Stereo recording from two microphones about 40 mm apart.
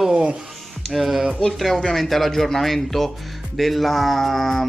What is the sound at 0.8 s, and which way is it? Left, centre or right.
Speech, centre.